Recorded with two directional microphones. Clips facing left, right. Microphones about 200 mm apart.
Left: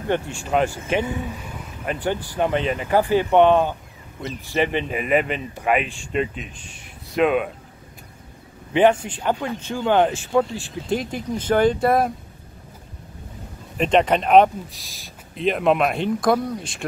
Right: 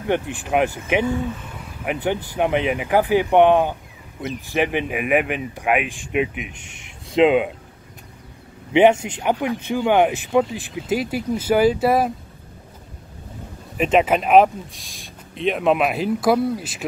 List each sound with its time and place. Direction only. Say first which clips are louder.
0.1 s a man's voice: right 1 dB; 15° right (ahead or behind)
8.7 s a man's voice: right 2 dB; 20° right (ahead or behind)
10.9 s speech: right 3 dB; 5° right (ahead or behind)
13.7 s speech: right 1 dB; 5° right (ahead or behind)